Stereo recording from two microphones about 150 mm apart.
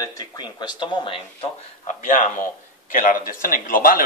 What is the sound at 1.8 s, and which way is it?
Speech, 55° left (ahead or behind).